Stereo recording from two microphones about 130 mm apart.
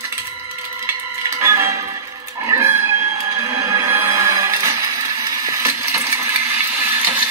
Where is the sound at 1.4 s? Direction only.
20° right (ahead or behind).